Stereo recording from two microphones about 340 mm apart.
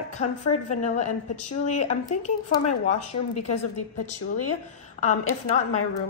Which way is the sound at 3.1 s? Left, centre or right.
Left.